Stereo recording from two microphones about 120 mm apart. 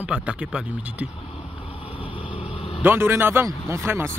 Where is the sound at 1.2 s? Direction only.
50° left (ahead or behind).